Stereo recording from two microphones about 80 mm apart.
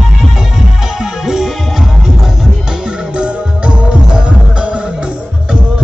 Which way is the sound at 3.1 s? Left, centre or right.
Centre.